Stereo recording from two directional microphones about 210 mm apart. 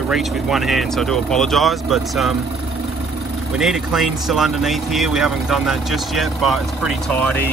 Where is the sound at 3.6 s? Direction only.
Centre (ahead or behind).